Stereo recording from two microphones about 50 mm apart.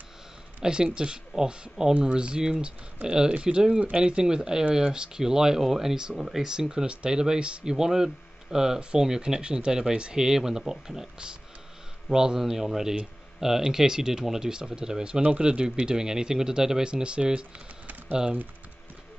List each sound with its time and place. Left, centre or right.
0.6 s speech: centre